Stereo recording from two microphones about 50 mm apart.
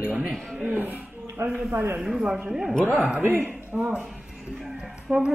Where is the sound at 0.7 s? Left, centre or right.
Right.